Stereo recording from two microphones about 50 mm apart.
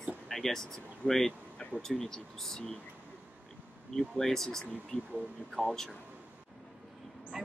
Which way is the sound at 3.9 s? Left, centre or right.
Centre.